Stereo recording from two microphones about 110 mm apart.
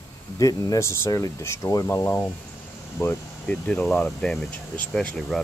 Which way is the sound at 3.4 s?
10° left (ahead or behind).